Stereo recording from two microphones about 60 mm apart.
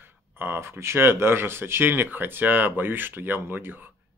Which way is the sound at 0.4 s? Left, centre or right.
Right.